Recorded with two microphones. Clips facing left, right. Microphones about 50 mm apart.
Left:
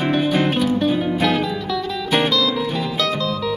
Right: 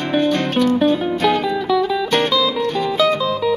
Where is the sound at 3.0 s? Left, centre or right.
Centre.